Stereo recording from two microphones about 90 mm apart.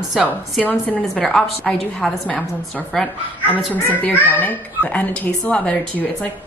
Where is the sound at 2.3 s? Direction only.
15° left (ahead or behind).